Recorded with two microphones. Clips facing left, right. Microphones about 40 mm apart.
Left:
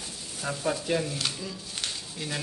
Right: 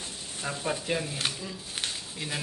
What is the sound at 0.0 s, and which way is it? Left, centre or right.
Frying, right.